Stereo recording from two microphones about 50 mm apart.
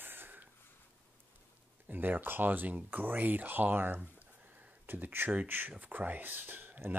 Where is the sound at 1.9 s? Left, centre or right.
Right.